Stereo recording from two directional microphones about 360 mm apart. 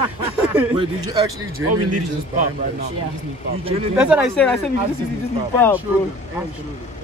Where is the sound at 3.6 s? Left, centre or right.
Centre.